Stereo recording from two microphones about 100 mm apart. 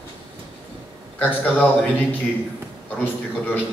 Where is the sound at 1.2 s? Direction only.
15° left (ahead or behind).